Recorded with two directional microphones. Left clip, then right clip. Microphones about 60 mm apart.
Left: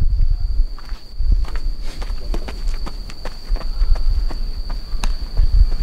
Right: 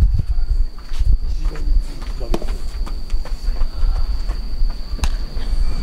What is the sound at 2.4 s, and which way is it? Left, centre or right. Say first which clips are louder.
Walk: left 1 dB; left.